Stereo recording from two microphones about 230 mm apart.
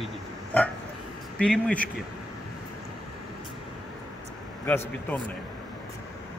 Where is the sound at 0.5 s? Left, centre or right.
Centre.